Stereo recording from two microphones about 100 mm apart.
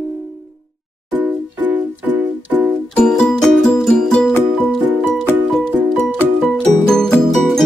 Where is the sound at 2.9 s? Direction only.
5° left (ahead or behind).